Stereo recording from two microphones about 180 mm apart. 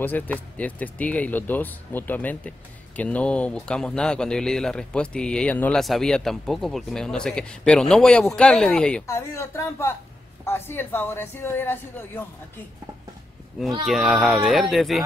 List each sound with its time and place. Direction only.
0.0 s speech: 10° left (ahead or behind)
9.0 s speech: 15° left (ahead or behind)
13.8 s speech: centre (ahead or behind)